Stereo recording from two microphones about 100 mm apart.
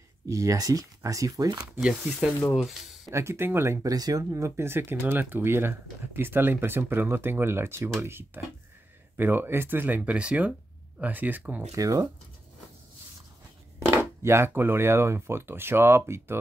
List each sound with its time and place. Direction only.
0.3 s speech: 35° right (ahead or behind)
1.8 s speech: 5° right (ahead or behind)
3.1 s speech: 25° right (ahead or behind)
3.9 s speech: 40° right (ahead or behind); by 11.6 s 15° right (ahead or behind)
11.7 s speech: 35° right (ahead or behind)
13.7 s speech: 30° right (ahead or behind)